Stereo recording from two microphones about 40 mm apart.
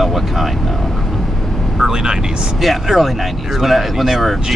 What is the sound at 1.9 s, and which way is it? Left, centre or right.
Speech, centre.